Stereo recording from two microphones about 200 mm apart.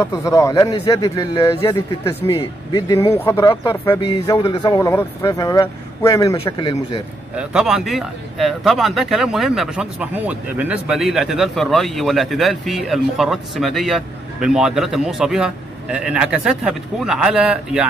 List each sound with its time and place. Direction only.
0.0 s a man's voice: 15° left (ahead or behind)
7.3 s speech: 5° right (ahead or behind)